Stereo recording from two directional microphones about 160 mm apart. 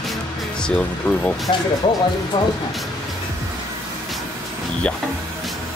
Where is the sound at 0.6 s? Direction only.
5° left (ahead or behind).